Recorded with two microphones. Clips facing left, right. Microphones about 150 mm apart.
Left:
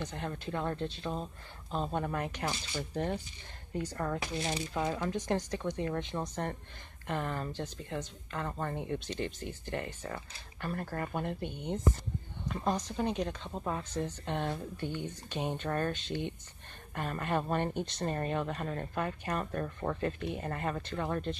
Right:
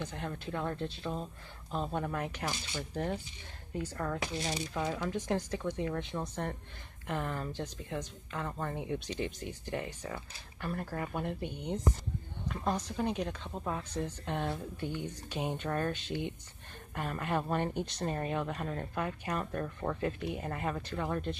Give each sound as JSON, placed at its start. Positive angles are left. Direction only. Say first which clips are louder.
{"t": 0.0, "sound": "speech", "louder": "left 1 dB", "side_deg": 0}